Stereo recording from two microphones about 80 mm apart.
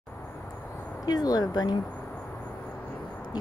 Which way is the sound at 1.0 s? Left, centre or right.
Left.